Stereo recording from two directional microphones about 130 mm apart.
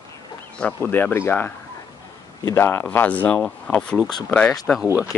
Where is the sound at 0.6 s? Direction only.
15° left (ahead or behind).